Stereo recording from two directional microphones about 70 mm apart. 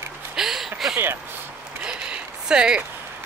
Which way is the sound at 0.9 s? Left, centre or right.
Right.